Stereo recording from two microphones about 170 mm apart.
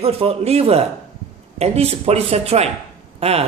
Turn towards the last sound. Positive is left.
turn(degrees=-35)  # may be behind; listen again after turning